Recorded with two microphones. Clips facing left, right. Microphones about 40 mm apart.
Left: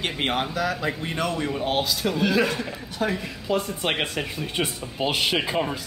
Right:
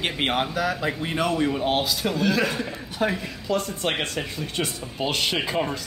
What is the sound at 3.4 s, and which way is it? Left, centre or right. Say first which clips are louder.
Speech: even; centre.